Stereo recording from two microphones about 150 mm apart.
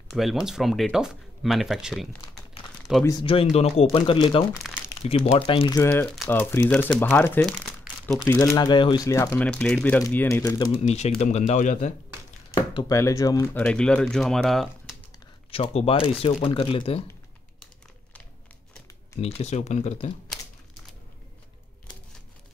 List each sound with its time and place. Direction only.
0.1 s speech: centre (ahead or behind)
3.1 s speech: 35° left (ahead or behind)
5.8 s speech: 15° left (ahead or behind)
8.4 s speech: 25° left (ahead or behind); by 10.0 s 5° left (ahead or behind)
10.0 s speech: 15° left (ahead or behind)
10.7 s speech: 45° left (ahead or behind)
12.7 s speech: 25° left (ahead or behind)
13.6 s speech: 5° left (ahead or behind)
15.5 s speech: 40° left (ahead or behind)
19.2 s speech: 45° left (ahead or behind)